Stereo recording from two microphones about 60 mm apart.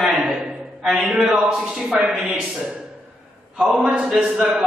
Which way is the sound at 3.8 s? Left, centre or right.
Centre.